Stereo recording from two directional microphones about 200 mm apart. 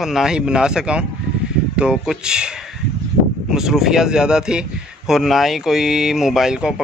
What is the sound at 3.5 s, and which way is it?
Speech, centre (ahead or behind).